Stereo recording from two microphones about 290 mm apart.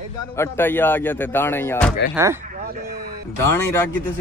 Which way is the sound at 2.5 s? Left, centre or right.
Right.